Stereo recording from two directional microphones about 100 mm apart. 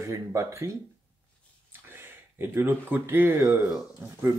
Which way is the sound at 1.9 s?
25° right (ahead or behind).